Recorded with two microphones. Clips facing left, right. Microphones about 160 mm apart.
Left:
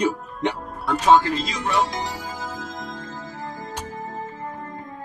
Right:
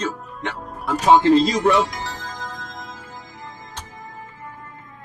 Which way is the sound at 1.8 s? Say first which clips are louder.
Left 2 dB; 20° left (ahead or behind).